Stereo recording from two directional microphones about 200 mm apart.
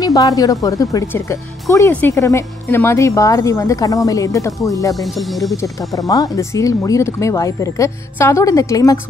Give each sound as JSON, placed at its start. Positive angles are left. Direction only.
{"t": 0.0, "sound": "speech", "side_deg": 15}
{"t": 5.0, "sound": "speech", "side_deg": 0}
{"t": 5.6, "sound": "speech", "side_deg": 15}